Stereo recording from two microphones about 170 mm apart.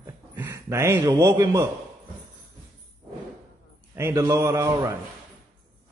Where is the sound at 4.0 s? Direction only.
15° right (ahead or behind).